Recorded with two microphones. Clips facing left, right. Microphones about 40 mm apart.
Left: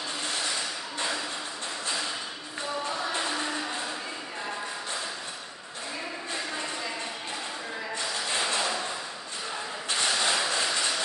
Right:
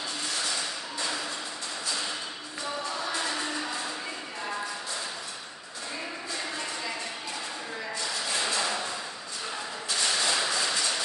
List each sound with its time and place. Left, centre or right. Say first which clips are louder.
2.9 s music: left 1 dB; left
8.3 s a sound: left 1 dB; left
9.8 s mechanisms: left 1 dB; left
10.5 s vehicle: left 1 dB; left